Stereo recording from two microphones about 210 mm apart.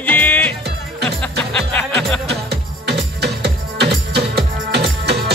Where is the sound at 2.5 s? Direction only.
50° right (ahead or behind).